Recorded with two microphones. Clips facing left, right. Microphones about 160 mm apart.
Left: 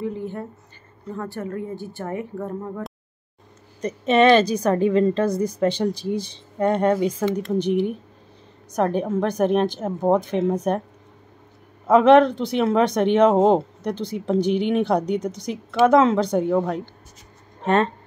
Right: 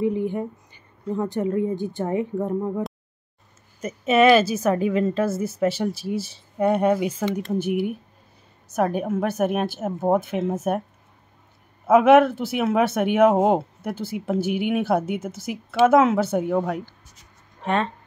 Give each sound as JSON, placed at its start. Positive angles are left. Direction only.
{"t": 0.0, "sound": "a woman's voice", "side_deg": -15}
{"t": 3.8, "sound": "a woman's voice", "side_deg": -5}
{"t": 11.9, "sound": "speech", "side_deg": -5}